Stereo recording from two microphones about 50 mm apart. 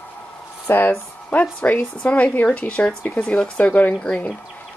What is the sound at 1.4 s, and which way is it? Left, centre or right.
Speech, left.